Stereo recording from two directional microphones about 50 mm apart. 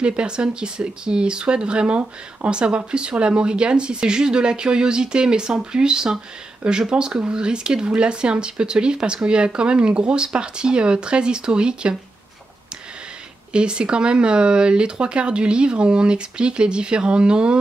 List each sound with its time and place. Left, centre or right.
0.0 s speech: right
13.5 s speech: centre